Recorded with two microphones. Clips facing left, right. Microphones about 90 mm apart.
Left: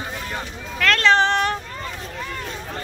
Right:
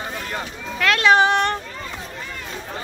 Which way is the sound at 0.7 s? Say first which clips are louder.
Right 1 dB; 5° right (ahead or behind).